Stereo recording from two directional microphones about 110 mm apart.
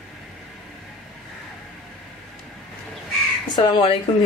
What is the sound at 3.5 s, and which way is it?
Speech, 45° left (ahead or behind).